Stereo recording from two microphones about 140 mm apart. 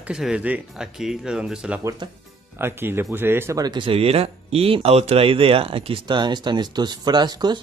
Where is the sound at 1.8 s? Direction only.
25° right (ahead or behind).